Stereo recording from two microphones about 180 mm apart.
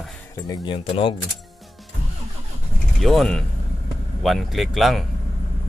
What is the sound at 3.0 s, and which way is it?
A man's voice, centre (ahead or behind).